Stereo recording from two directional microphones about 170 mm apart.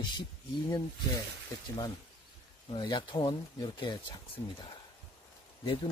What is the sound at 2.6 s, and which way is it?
Speech, 25° left (ahead or behind).